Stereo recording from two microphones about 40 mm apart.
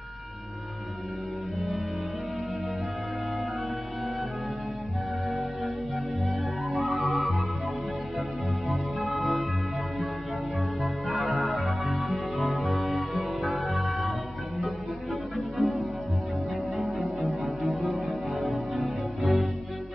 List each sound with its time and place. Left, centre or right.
6.2 s music: centre
9.2 s music: centre
11.1 s music: centre
15.3 s music: centre